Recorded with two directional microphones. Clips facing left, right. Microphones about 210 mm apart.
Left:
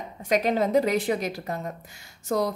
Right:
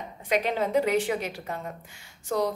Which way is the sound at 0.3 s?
40° left (ahead or behind).